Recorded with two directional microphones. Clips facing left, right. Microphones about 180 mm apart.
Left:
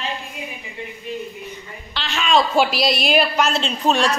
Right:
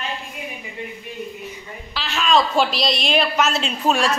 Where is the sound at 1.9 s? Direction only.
Centre (ahead or behind).